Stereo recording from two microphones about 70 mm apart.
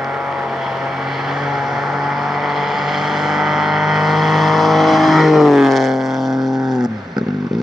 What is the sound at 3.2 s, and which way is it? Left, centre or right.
Vehicle, centre.